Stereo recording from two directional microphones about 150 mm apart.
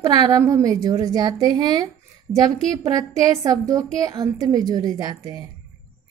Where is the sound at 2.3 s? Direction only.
5° right (ahead or behind).